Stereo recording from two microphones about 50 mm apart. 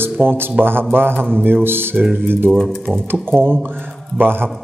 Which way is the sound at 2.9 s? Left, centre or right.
Centre.